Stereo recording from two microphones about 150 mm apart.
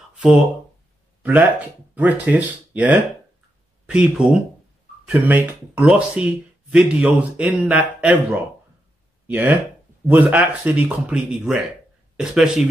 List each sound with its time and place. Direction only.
0.1 s a sound: 5° right (ahead or behind)
1.2 s speech: 10° right (ahead or behind)
9.3 s speech: 15° right (ahead or behind)